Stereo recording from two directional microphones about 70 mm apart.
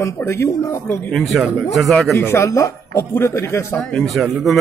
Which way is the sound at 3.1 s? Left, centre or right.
Left.